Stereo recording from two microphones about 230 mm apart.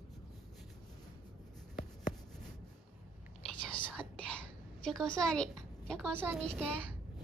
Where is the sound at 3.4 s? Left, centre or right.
Centre.